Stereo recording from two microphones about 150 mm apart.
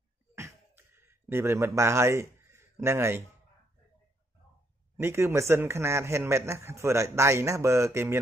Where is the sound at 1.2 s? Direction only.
15° right (ahead or behind).